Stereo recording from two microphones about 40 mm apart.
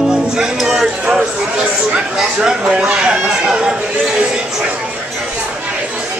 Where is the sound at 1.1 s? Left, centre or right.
Right.